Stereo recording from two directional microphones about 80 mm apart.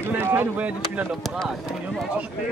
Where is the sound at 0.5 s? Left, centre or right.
Centre.